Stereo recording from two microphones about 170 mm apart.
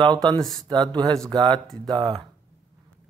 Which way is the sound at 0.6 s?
25° right (ahead or behind).